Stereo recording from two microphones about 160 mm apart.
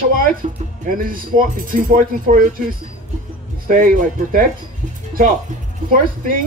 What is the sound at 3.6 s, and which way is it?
Speech, 60° right (ahead or behind).